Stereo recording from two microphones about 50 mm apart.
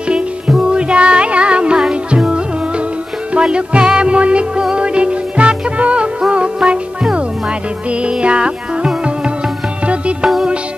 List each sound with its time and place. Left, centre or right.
0.1 s music: centre